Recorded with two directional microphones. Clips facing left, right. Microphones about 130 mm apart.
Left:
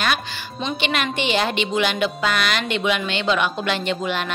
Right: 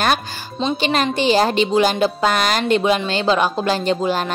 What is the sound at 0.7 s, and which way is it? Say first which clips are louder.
A woman's voice: right 4 dB; 35° right (ahead or behind).